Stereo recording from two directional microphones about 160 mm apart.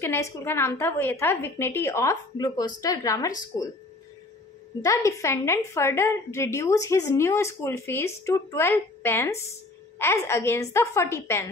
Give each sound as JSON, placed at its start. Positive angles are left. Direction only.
{"t": 0.0, "sound": "a woman's voice", "side_deg": 15}
{"t": 4.8, "sound": "a woman's voice", "side_deg": 20}